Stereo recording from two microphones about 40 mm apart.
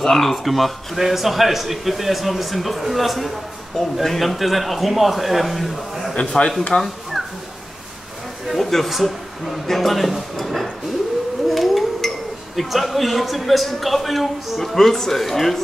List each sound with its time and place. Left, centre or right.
0.0 s a man's voice: centre
6.1 s a man's voice: left
8.5 s a man's voice: centre
11.4 s a sound: centre
12.5 s a man's voice: centre